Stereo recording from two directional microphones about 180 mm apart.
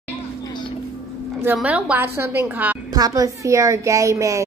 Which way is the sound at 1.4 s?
10° right (ahead or behind).